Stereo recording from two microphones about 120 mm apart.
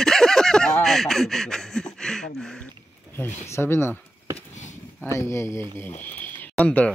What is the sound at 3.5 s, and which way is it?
Speech, 20° left (ahead or behind).